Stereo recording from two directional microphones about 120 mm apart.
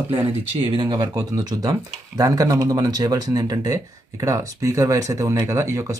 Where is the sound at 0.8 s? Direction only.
35° right (ahead or behind).